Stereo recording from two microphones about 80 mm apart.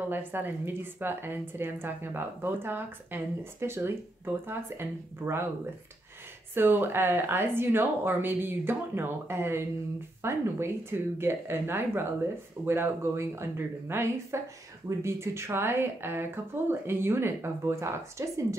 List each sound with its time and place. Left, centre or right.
0.1 s a woman's voice: right
6.5 s a woman's voice: right